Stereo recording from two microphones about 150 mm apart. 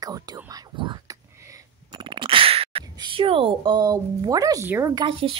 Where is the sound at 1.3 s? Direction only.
20° right (ahead or behind); by 2.8 s 40° right (ahead or behind).